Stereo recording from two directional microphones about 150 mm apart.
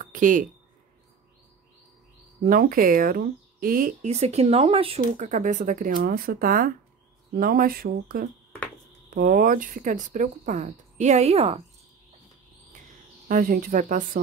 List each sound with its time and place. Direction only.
0.0 s a sound: 60° right (ahead or behind)
2.4 s speech: 70° right (ahead or behind)
4.0 s speech: 45° right (ahead or behind); by 8.3 s 75° right (ahead or behind)
9.1 s speech: 65° right (ahead or behind); by 11.6 s 40° right (ahead or behind)
13.3 s speech: 70° right (ahead or behind)